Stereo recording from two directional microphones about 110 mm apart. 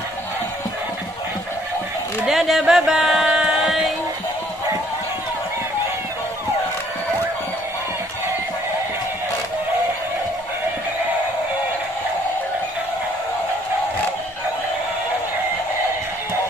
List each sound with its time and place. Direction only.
2.2 s music: centre (ahead or behind)